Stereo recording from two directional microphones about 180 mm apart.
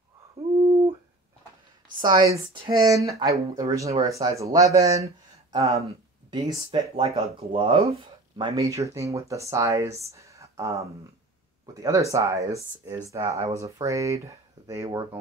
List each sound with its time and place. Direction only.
2.0 s speech: 25° right (ahead or behind)